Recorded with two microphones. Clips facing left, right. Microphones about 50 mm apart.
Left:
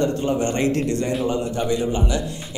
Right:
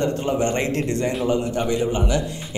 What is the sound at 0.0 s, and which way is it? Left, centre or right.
Speech, right.